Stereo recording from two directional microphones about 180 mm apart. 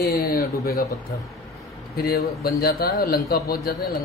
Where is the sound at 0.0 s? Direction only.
55° left (ahead or behind).